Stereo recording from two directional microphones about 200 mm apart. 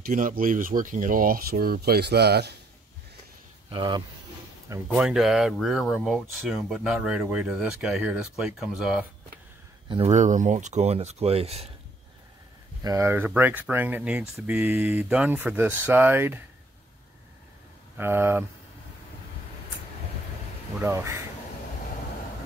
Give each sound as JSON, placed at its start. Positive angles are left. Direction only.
{"t": 0.0, "sound": "speech", "side_deg": -45}
{"t": 3.7, "sound": "speech", "side_deg": -20}
{"t": 4.6, "sound": "speech", "side_deg": -10}
{"t": 9.8, "sound": "speech", "side_deg": -25}
{"t": 10.1, "sound": "speech", "side_deg": -40}
{"t": 12.8, "sound": "speech", "side_deg": -15}
{"t": 17.9, "sound": "speech", "side_deg": -10}
{"t": 20.8, "sound": "speech", "side_deg": -15}